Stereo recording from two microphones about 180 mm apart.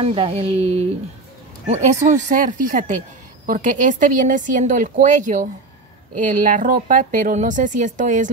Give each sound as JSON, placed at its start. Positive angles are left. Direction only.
{"t": 0.0, "sound": "a woman's voice", "side_deg": -30}